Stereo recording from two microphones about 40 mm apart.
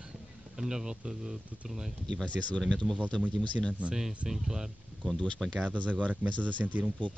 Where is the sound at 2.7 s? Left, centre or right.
Left.